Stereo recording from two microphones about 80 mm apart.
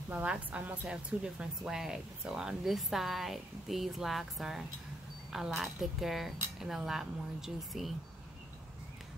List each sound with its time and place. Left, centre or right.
0.1 s a woman's voice: centre